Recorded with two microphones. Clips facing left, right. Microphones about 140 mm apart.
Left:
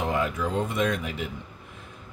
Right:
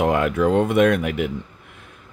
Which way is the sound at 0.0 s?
70° right (ahead or behind).